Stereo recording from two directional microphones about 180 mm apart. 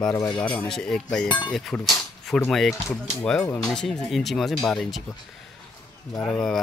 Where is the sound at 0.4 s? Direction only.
5° left (ahead or behind).